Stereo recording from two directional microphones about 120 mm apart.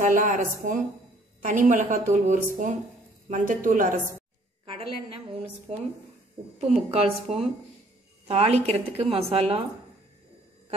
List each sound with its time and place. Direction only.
0.0 s a woman's voice: 90° right
4.6 s a woman's voice: 50° right (ahead or behind)
6.7 s a woman's voice: 65° right (ahead or behind)